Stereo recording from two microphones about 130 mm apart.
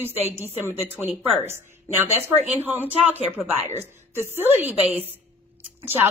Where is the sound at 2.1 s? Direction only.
15° right (ahead or behind).